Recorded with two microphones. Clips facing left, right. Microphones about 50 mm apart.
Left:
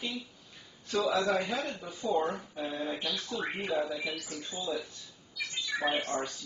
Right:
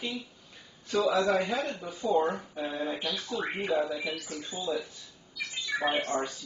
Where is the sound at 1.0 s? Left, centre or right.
Centre.